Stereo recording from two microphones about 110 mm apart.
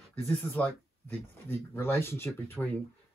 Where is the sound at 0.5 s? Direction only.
15° left (ahead or behind).